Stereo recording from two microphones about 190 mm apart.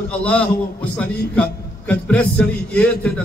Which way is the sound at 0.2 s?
10° left (ahead or behind).